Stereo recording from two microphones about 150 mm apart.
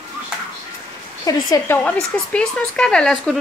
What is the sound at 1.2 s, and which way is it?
Speech, 25° left (ahead or behind).